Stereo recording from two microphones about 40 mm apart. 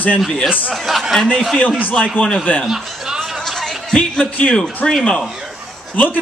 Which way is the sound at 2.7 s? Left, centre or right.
Centre.